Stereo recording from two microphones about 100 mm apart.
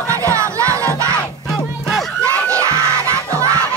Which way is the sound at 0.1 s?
30° right (ahead or behind).